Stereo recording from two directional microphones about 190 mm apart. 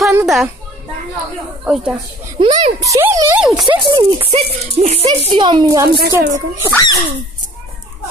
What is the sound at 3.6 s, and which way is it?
Speech, 25° right (ahead or behind).